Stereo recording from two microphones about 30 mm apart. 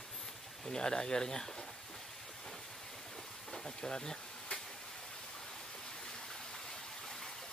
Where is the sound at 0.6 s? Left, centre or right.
Left.